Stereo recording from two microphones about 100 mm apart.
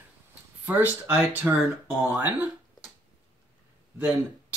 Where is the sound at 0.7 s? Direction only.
20° right (ahead or behind).